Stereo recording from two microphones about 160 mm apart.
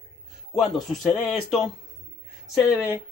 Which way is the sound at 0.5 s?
Centre (ahead or behind).